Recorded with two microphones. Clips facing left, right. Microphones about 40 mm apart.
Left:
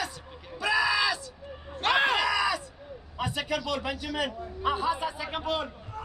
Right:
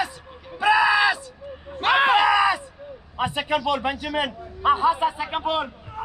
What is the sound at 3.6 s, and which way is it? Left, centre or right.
A man's voice, right.